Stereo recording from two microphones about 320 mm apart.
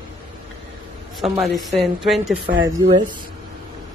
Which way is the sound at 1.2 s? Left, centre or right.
Centre.